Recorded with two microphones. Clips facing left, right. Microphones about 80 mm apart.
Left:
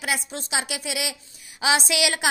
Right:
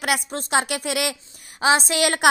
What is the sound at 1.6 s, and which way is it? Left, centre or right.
Speech, right.